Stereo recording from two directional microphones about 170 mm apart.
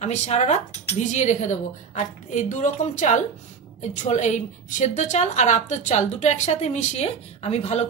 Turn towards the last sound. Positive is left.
turn(degrees=40)  # may be behind; listen again after turning